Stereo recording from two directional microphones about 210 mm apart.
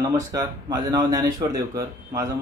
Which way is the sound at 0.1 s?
15° right (ahead or behind).